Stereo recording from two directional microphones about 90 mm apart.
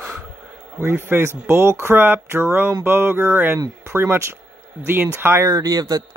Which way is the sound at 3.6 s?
35° right (ahead or behind).